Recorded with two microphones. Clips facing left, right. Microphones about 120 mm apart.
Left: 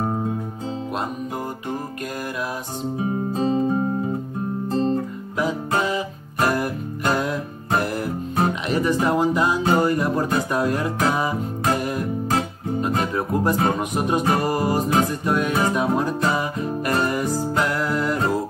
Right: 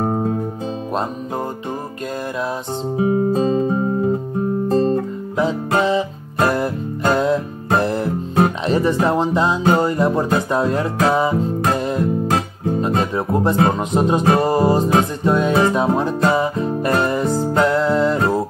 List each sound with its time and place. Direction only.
4.6 s guitar: 55° right (ahead or behind)
5.4 s music: 30° right (ahead or behind)